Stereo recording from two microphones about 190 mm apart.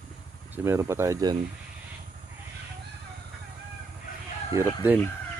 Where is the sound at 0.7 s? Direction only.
15° right (ahead or behind).